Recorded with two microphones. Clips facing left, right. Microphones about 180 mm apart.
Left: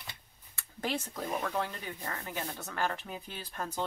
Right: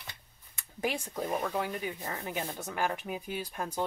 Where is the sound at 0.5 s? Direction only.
15° right (ahead or behind).